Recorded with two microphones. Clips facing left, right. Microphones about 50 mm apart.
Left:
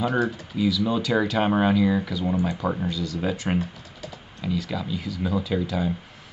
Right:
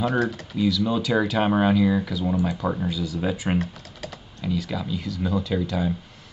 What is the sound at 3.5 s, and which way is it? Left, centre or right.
Typing, right.